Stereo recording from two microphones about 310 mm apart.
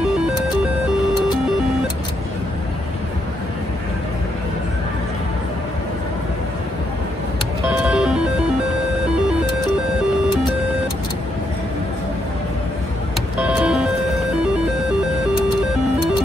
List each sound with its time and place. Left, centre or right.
7.7 s music: centre
13.4 s music: centre